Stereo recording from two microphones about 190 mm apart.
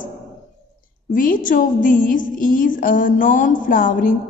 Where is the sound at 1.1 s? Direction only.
45° left (ahead or behind).